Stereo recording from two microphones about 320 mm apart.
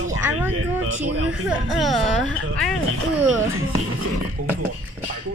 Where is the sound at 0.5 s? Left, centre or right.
Right.